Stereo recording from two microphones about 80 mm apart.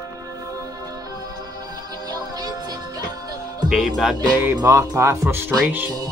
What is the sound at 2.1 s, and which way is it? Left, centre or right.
Music, right.